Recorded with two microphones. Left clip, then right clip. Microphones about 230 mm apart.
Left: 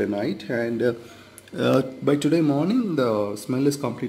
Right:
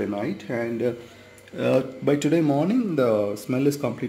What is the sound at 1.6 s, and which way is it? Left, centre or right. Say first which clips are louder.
Speech: left 1 dB; centre.